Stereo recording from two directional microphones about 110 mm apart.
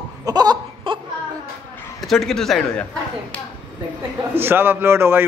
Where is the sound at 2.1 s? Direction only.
5° left (ahead or behind).